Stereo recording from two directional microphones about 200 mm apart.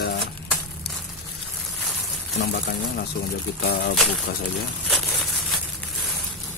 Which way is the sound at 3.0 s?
55° left (ahead or behind).